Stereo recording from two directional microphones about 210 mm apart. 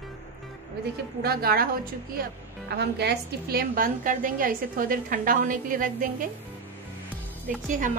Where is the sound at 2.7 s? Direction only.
50° right (ahead or behind).